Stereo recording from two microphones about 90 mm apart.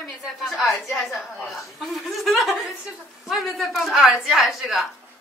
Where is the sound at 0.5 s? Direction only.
Centre (ahead or behind).